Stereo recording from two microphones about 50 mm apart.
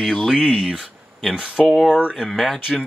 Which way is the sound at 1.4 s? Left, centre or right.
Right.